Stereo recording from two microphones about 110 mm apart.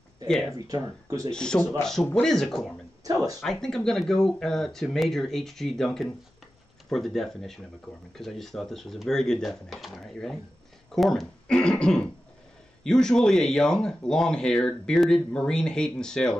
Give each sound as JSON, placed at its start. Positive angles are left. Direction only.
{"t": 0.3, "sound": "speech", "side_deg": 5}
{"t": 0.7, "sound": "speech", "side_deg": -35}
{"t": 1.3, "sound": "a man's voice", "side_deg": 5}
{"t": 3.0, "sound": "speech", "side_deg": -30}
{"t": 3.6, "sound": "speech", "side_deg": 5}